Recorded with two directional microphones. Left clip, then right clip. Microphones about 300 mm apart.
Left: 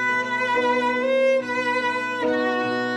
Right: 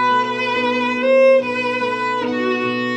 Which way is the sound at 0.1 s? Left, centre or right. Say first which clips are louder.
Right 4 dB; centre.